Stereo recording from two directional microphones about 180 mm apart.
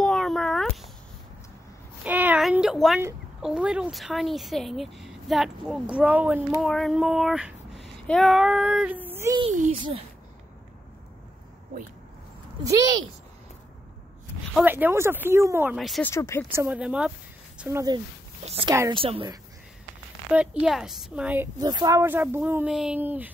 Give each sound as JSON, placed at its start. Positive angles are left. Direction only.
{"t": 0.0, "sound": "a sound", "side_deg": 0}
{"t": 2.0, "sound": "a sound", "side_deg": -10}
{"t": 3.4, "sound": "a woman's voice", "side_deg": -5}
{"t": 6.6, "sound": "speech", "side_deg": 0}
{"t": 9.4, "sound": "a child's voice", "side_deg": -40}
{"t": 12.6, "sound": "a woman's voice", "side_deg": -20}
{"t": 14.6, "sound": "speech", "side_deg": -10}
{"t": 15.7, "sound": "a woman's voice", "side_deg": 0}
{"t": 16.0, "sound": "speech", "side_deg": 15}
{"t": 16.4, "sound": "a woman's voice", "side_deg": -10}
{"t": 20.2, "sound": "speech", "side_deg": -5}
{"t": 21.5, "sound": "speech", "side_deg": -20}